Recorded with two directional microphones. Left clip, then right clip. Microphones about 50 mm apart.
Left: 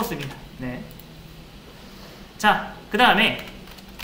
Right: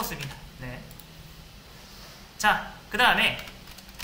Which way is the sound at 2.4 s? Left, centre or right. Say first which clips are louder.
Left 4 dB; right.